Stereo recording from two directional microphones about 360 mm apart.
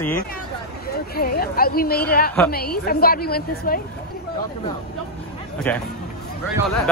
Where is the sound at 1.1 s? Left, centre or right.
Left.